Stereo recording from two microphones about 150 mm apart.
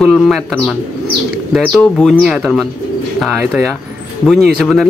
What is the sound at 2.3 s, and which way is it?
Speech, 5° right (ahead or behind).